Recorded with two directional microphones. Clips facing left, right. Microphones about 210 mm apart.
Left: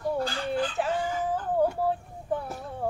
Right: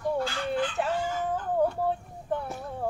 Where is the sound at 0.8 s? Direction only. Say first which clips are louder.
Left 1 dB; centre (ahead or behind).